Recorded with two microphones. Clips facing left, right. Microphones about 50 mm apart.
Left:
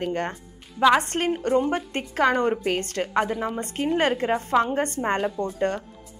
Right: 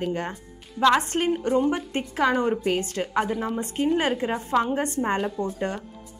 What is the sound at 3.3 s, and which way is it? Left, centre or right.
Speech, centre.